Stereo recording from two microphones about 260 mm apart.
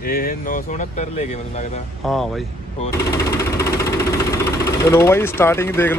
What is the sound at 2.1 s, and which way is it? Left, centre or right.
Speech, centre.